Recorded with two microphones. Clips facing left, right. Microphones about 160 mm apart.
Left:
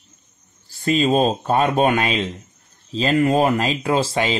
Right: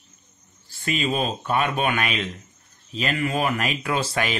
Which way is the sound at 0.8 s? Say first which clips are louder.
Left 8 dB; 40° left (ahead or behind).